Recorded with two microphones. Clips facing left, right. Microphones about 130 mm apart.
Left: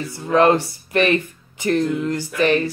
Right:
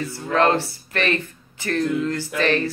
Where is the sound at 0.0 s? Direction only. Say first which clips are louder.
Left 4 dB; 15° left (ahead or behind).